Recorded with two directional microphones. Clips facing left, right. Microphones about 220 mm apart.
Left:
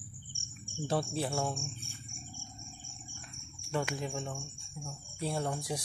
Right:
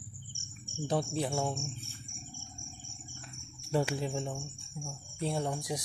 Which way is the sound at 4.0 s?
30° right (ahead or behind).